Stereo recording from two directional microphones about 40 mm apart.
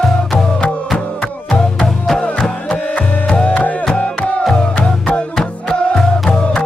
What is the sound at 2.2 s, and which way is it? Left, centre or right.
Music, left.